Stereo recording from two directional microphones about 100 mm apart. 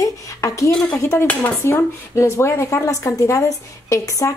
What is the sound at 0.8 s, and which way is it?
A woman's voice, 30° left (ahead or behind).